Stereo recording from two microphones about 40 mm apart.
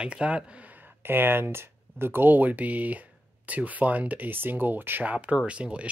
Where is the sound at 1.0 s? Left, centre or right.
Right.